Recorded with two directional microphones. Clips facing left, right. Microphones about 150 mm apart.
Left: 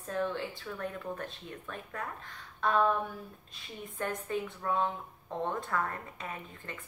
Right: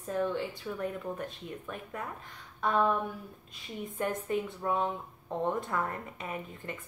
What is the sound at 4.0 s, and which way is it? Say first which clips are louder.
A woman's voice: right 2 dB; 15° right (ahead or behind).